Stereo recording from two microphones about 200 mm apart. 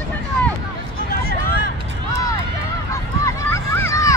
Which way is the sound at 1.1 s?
50° left (ahead or behind).